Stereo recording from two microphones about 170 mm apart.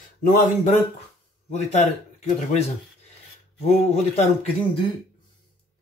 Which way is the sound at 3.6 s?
40° left (ahead or behind).